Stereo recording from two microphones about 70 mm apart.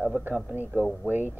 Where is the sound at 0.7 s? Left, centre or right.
Right.